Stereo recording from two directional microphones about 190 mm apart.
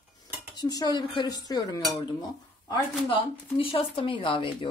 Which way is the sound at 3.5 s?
30° left (ahead or behind).